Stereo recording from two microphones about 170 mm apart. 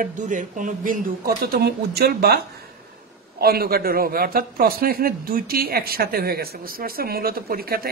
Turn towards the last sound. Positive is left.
turn(degrees=-60)  # may be behind; listen again after turning